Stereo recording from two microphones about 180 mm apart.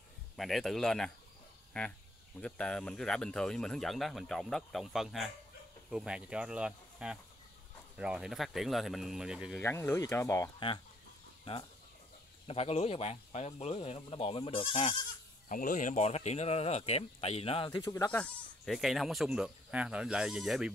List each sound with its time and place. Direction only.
0.4 s speech: centre (ahead or behind)
9.6 s speech: 15° left (ahead or behind)
12.4 s speech: 35° left (ahead or behind)
15.4 s speech: 45° left (ahead or behind)
17.6 s speech: 20° left (ahead or behind)
18.1 s speech: 5° left (ahead or behind)